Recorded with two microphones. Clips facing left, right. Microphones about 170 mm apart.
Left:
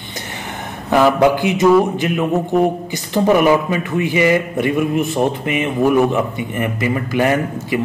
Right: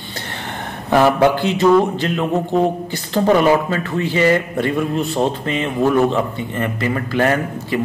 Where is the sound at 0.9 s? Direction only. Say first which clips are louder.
Left 1 dB; 10° left (ahead or behind).